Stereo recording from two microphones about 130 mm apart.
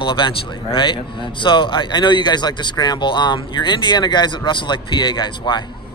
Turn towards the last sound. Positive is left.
turn(degrees=35)  # may be behind; listen again after turning